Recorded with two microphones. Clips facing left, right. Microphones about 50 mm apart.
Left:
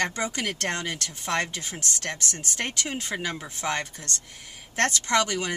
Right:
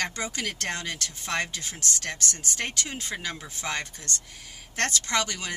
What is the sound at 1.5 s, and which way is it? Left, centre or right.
Speech, centre.